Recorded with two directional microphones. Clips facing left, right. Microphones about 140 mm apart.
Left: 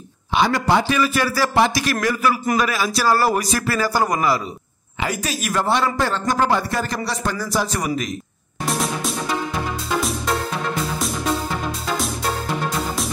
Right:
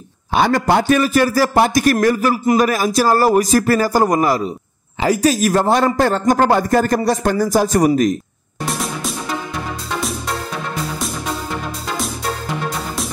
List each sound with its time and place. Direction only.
0.3 s a man's voice: 45° right (ahead or behind)
8.6 s music: centre (ahead or behind)